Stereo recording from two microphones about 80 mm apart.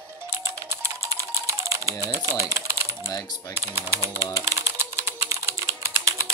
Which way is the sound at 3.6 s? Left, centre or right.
Right.